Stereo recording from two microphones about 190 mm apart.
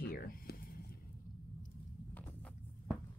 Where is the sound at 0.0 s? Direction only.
50° left (ahead or behind).